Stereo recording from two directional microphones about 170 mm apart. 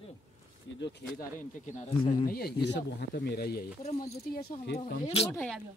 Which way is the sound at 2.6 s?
85° left.